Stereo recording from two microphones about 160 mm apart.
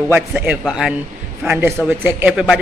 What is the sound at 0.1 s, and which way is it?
A man's voice, 10° right (ahead or behind).